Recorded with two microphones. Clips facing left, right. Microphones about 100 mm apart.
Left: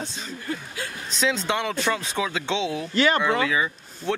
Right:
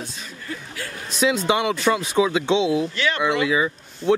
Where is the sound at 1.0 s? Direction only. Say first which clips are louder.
Right 5 dB; 10° right (ahead or behind).